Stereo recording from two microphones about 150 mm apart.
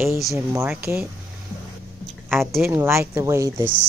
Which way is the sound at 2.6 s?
15° right (ahead or behind).